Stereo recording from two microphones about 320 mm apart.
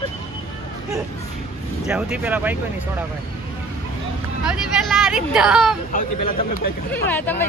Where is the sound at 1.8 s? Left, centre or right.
Centre.